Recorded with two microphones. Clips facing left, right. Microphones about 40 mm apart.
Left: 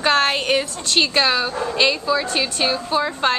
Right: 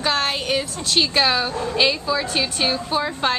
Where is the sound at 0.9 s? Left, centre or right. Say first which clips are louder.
Left 1 dB; centre.